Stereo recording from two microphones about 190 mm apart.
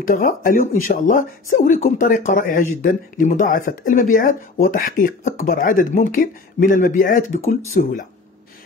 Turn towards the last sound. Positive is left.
turn(degrees=50)  # may be behind; listen again after turning